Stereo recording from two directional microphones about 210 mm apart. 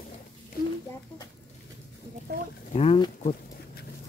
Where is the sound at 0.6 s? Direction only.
45° left (ahead or behind).